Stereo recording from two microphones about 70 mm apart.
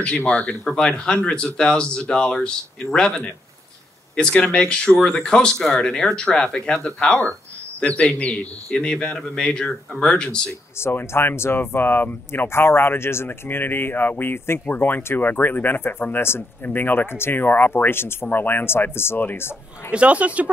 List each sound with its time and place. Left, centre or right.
0.0 s speech: centre
10.8 s speech: left
19.9 s speech: centre